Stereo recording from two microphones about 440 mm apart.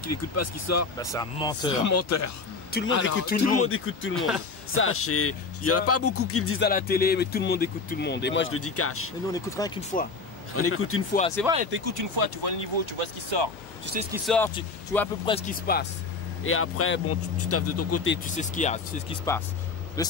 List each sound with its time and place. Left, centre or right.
0.0 s speech: left
0.9 s speech: centre
1.7 s speech: left
3.0 s speech: left
9.3 s speech: centre
10.5 s speech: left
11.1 s speech: centre
11.4 s speech: centre
11.7 s speech: right
14.1 s speech: centre